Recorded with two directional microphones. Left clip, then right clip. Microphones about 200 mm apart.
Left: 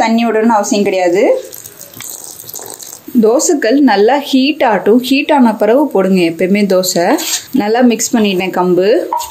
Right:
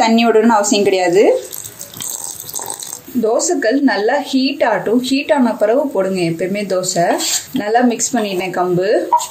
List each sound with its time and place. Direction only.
0.0 s a woman's voice: centre (ahead or behind)
3.2 s a woman's voice: 40° left (ahead or behind)